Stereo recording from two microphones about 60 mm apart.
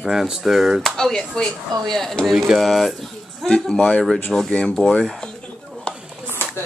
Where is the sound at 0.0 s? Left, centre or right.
Centre.